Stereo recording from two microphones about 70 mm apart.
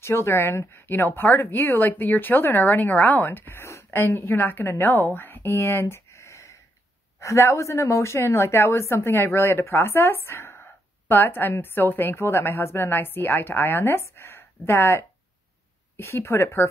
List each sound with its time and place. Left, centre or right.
0.0 s a woman's voice: left